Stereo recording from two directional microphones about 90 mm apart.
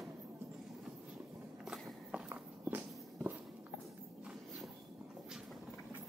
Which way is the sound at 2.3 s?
25° right (ahead or behind).